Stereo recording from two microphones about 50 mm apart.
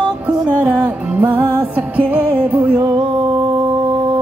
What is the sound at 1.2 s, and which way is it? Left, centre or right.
Music, right.